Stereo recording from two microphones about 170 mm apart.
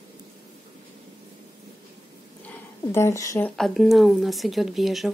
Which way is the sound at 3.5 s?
Centre (ahead or behind).